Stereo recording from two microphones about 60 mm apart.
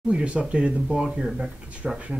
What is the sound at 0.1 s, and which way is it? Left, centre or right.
Speech, centre.